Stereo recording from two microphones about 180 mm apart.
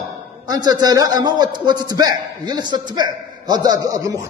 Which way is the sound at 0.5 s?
20° right (ahead or behind).